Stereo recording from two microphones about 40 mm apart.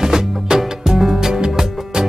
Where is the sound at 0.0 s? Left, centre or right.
Centre.